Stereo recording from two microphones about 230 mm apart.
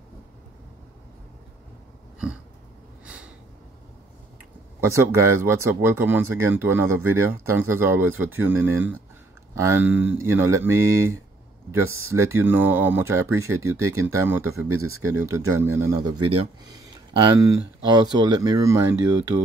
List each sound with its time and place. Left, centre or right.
4.7 s a sound: centre
5.4 s speech: centre
11.8 s speech: right
12.1 s speech: centre
14.7 s speech: right
15.1 s speech: centre